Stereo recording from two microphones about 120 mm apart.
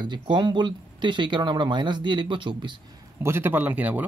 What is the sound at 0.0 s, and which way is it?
Speech, 40° right (ahead or behind).